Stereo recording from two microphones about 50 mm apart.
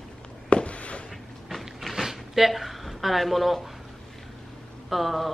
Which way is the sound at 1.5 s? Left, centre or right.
Centre.